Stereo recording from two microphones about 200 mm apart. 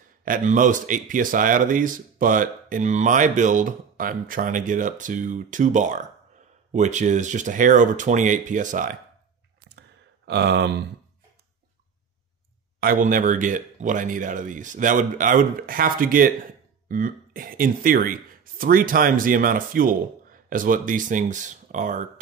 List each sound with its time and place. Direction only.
0.2 s speech: 40° right (ahead or behind)
10.2 s a sound: 60° right (ahead or behind)
12.8 s speech: 45° right (ahead or behind)